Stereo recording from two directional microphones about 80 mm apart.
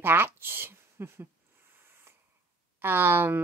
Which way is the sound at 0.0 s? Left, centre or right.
Right.